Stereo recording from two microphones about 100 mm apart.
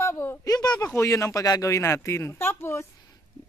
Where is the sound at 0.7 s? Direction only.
20° left (ahead or behind).